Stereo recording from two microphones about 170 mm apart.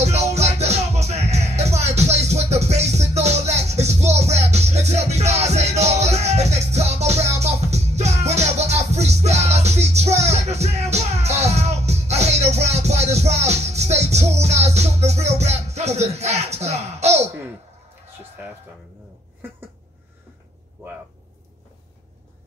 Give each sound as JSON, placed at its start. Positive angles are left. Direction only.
{"t": 0.0, "sound": "music", "side_deg": -40}